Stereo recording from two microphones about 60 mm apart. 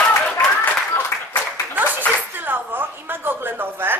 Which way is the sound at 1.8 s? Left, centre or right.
Right.